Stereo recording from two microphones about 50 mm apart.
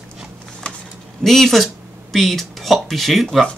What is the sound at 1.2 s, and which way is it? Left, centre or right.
Speech, centre.